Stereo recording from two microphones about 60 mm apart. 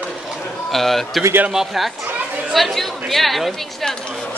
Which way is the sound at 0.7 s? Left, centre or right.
Centre.